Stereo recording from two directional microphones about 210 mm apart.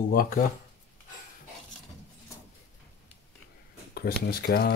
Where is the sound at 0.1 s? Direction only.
45° left (ahead or behind).